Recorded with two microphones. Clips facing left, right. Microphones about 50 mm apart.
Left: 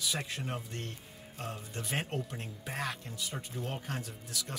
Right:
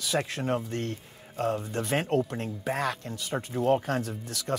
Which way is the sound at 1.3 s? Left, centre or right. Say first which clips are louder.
Right 13 dB; right.